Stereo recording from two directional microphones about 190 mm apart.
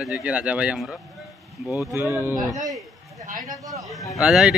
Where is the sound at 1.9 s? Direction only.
15° right (ahead or behind).